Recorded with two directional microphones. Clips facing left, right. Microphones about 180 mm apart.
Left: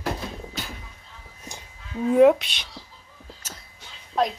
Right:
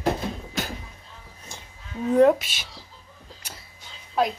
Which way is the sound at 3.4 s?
10° right (ahead or behind).